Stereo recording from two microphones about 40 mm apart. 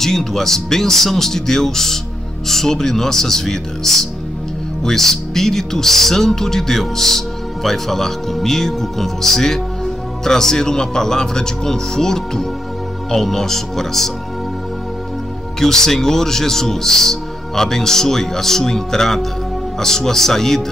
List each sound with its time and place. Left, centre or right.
0.0 s speech: centre
15.6 s speech: centre